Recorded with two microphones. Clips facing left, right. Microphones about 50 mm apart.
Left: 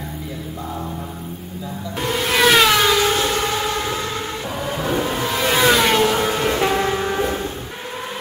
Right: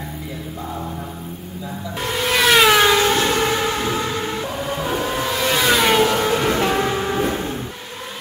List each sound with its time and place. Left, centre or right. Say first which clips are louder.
2.0 s a sound: left 1 dB; centre
3.2 s train: right 2 dB; right
3.8 s vehicle: right 2 dB; centre
6.6 s music: even; centre